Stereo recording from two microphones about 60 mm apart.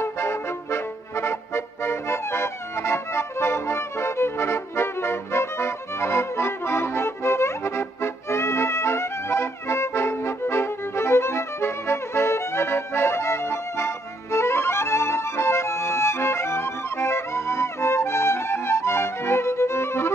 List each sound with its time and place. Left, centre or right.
0.0 s music: left